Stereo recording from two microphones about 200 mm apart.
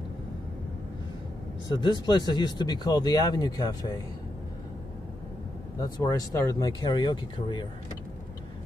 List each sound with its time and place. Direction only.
1.7 s speech: 25° left (ahead or behind)
5.8 s speech: 15° left (ahead or behind)